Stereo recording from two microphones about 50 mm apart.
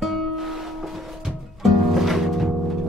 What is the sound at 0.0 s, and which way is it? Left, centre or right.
Music, centre.